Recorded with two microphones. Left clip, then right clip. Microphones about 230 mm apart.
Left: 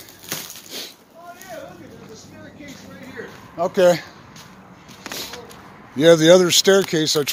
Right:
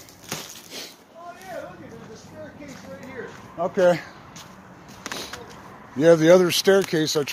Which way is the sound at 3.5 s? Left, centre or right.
Left.